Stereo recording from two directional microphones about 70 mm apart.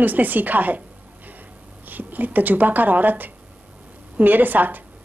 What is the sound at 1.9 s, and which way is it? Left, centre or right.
Speech, right.